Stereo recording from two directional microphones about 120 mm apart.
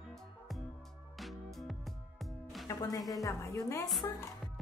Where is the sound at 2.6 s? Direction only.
30° left (ahead or behind).